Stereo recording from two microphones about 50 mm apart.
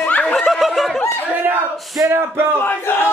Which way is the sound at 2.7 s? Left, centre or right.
Left.